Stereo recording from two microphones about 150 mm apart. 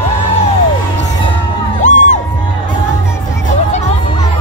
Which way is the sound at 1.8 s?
55° left (ahead or behind).